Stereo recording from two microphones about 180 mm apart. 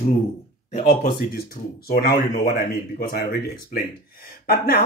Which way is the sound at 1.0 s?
60° left (ahead or behind).